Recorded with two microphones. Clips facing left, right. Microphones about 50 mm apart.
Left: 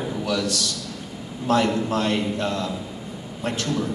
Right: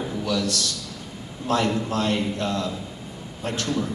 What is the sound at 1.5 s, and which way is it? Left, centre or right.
A man's voice, centre.